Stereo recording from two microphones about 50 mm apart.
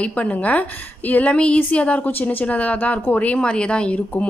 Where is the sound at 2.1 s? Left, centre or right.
Left.